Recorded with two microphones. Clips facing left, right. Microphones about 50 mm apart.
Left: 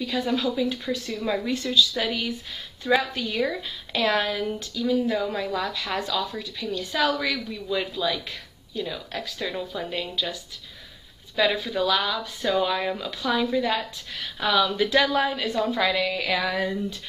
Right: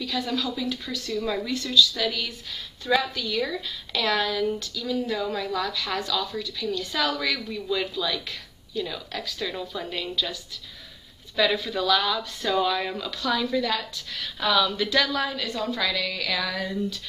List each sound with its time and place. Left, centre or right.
0.0 s a woman's voice: centre
11.3 s speech: centre